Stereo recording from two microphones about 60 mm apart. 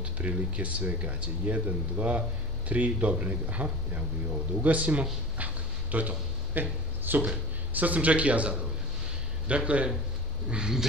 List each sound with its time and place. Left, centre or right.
0.0 s speech: right
5.4 s a sound: right
7.2 s speech: right